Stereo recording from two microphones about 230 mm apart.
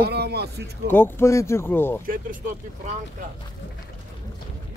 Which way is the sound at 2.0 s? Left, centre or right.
Right.